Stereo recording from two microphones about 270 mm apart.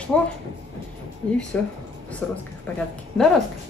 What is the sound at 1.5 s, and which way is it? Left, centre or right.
Speech, centre.